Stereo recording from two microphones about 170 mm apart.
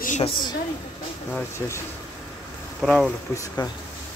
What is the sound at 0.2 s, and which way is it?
Speech, 25° left (ahead or behind).